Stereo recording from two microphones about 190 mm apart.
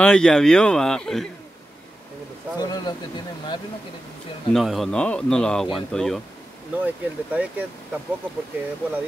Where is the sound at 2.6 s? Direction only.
20° left (ahead or behind).